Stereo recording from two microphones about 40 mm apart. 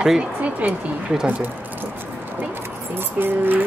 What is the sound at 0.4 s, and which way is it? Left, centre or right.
Speech, right.